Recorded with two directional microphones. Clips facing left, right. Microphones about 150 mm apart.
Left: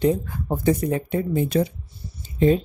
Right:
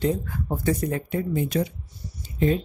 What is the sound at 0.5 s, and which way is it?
Speech, 25° left (ahead or behind).